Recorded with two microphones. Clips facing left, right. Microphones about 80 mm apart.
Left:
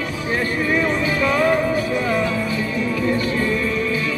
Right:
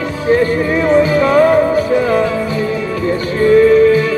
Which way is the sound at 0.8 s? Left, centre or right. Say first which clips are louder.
Right 9 dB; right.